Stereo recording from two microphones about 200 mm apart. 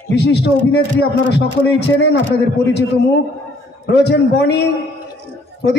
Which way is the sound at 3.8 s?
55° left (ahead or behind).